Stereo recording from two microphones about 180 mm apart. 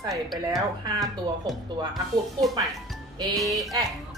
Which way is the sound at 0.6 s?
20° right (ahead or behind).